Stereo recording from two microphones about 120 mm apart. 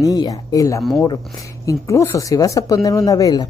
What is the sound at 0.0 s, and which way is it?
Speech, 30° left (ahead or behind).